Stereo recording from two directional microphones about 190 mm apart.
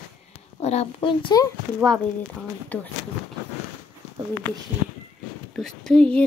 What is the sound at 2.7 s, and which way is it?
Speech, 10° left (ahead or behind).